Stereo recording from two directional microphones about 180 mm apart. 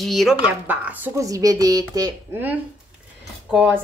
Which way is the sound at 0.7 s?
10° right (ahead or behind).